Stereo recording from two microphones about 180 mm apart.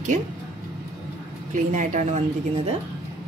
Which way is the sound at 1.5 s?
45° right (ahead or behind).